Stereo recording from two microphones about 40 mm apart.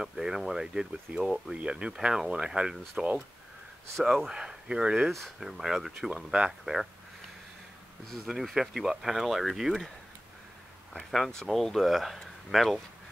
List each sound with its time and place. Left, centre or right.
0.0 s speech: centre
4.0 s speech: centre
4.3 s speech: centre
5.4 s speech: centre
6.0 s speech: right
6.6 s speech: centre
8.3 s speech: centre
11.0 s speech: centre